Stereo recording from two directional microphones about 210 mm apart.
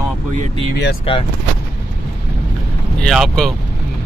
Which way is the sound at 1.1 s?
25° left (ahead or behind).